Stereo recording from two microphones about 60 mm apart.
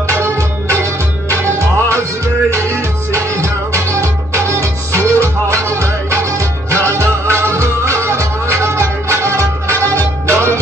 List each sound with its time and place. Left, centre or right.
0.2 s music: right